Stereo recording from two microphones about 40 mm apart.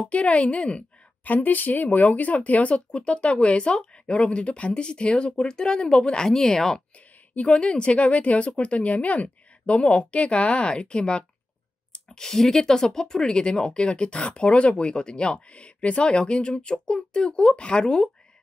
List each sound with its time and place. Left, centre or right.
0.0 s speech: left
0.7 s speech: left
6.2 s speech: centre
7.3 s speech: left
12.1 s speech: centre